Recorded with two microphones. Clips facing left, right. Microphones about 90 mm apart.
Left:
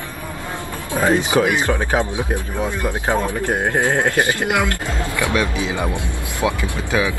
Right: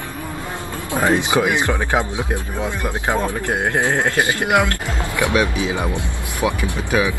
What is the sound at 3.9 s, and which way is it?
Speech, 15° left (ahead or behind).